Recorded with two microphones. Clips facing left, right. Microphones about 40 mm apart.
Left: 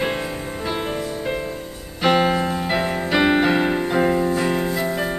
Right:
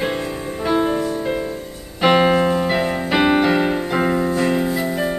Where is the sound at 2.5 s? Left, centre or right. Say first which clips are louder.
Right 3 dB; centre.